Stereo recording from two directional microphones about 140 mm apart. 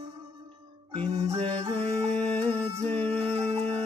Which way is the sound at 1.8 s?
10° left (ahead or behind).